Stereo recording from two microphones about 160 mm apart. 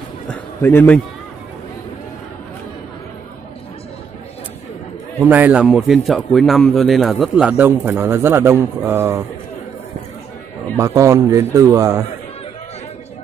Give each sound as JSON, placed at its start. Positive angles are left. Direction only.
{"t": 0.3, "sound": "a sound", "side_deg": 15}
{"t": 5.2, "sound": "speech", "side_deg": -10}
{"t": 10.8, "sound": "a man's voice", "side_deg": -20}